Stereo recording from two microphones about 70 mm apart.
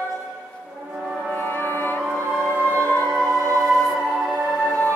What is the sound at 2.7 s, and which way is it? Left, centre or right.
Music, left.